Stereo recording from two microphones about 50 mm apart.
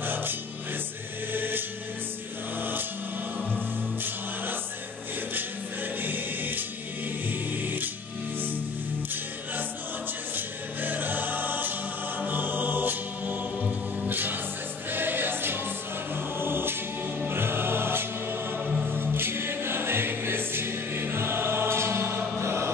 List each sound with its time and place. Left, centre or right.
0.0 s music: right
1.3 s choir: right
2.6 s a sound: right
5.9 s choir: right
7.2 s music: right
10.3 s choir: right
17.3 s music: right
18.9 s choir: right